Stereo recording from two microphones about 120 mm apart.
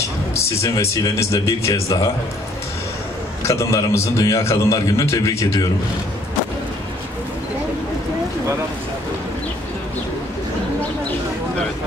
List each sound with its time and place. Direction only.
0.6 s a man's voice: 25° left (ahead or behind)
3.4 s a man's voice: 25° left (ahead or behind)